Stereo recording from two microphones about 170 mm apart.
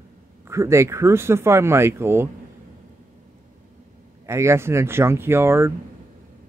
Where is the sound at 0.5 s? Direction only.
15° right (ahead or behind).